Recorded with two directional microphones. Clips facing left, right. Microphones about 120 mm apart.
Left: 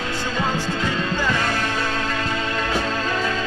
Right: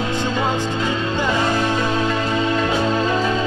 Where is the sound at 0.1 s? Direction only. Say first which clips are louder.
Right 1 dB; 20° right (ahead or behind).